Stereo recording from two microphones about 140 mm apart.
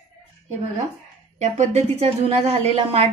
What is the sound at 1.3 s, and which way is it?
Speech, 55° right (ahead or behind).